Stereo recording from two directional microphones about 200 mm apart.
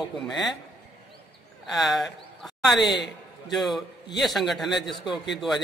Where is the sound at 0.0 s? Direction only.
Centre (ahead or behind).